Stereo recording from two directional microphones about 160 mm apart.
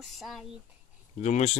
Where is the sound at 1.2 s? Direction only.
45° left (ahead or behind).